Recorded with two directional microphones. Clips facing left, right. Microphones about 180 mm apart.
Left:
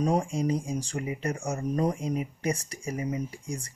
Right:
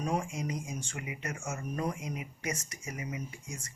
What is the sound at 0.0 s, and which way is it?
Speech, 35° left (ahead or behind).